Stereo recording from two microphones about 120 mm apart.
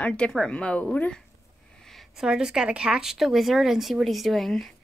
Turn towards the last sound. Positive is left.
turn(degrees=0)  # may be behind; listen again after turning